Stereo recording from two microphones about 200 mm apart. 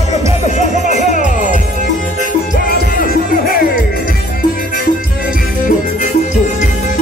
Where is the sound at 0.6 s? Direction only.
35° left (ahead or behind).